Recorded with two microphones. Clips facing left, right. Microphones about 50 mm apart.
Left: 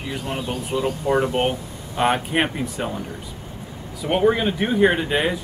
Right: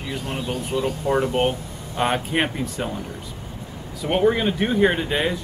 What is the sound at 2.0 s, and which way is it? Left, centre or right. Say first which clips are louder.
Speech: left 2 dB; centre.